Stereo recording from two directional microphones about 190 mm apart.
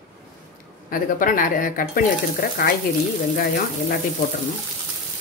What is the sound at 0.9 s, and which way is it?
Speech, 45° left (ahead or behind).